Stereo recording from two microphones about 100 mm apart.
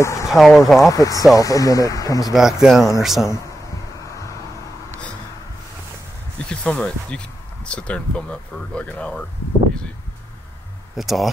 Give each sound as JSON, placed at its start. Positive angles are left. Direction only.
{"t": 0.0, "sound": "speech", "side_deg": 30}
{"t": 0.3, "sound": "speech", "side_deg": 0}
{"t": 0.9, "sound": "speech", "side_deg": 35}
{"t": 2.3, "sound": "speech", "side_deg": -5}
{"t": 6.5, "sound": "speech", "side_deg": 10}
{"t": 11.0, "sound": "speech", "side_deg": 0}